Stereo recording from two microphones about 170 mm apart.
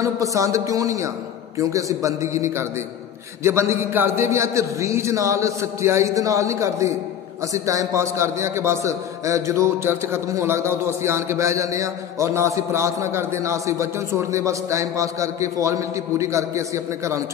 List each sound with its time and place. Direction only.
0.0 s a man's voice: 20° right (ahead or behind)